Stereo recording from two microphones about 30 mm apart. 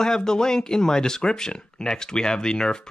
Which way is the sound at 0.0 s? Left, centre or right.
Left.